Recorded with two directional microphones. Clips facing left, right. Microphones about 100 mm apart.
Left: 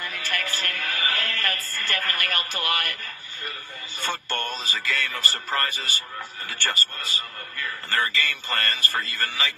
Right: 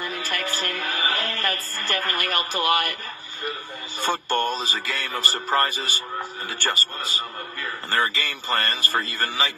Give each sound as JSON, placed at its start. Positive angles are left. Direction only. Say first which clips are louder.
{"t": 0.3, "sound": "music", "louder": "even", "side_deg": -25}
{"t": 2.0, "sound": "speech", "louder": "right 4 dB", "side_deg": -25}
{"t": 4.1, "sound": "music", "louder": "right 7 dB", "side_deg": -15}
{"t": 4.6, "sound": "a man's voice", "louder": "even", "side_deg": -35}